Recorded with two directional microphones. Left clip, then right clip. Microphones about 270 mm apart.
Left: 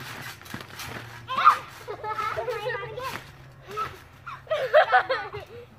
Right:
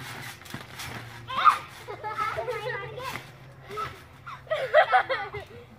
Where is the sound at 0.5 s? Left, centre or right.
Centre.